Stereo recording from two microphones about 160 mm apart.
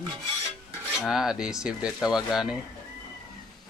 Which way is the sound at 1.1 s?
5° right (ahead or behind).